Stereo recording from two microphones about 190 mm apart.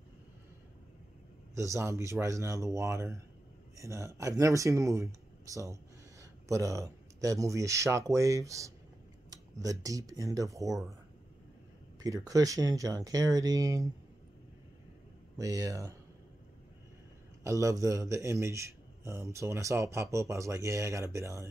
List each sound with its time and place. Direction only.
1.5 s a man's voice: 15° right (ahead or behind)
12.0 s speech: 20° right (ahead or behind)
15.3 s a man's voice: 15° right (ahead or behind)
17.4 s a man's voice: 15° right (ahead or behind)